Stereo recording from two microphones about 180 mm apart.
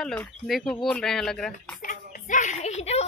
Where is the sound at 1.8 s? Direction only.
45° left (ahead or behind).